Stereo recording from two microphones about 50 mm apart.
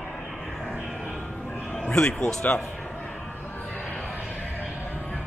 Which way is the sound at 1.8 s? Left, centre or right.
Centre.